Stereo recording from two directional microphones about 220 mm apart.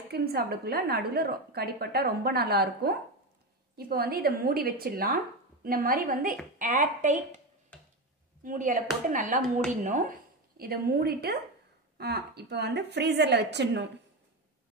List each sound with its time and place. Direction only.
0.1 s a woman's voice: 45° right (ahead or behind)
8.5 s a woman's voice: 35° right (ahead or behind)